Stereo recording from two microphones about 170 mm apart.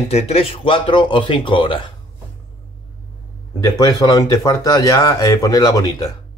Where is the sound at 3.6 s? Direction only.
20° left (ahead or behind).